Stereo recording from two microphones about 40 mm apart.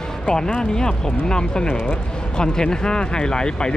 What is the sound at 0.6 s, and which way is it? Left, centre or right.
Speech, centre.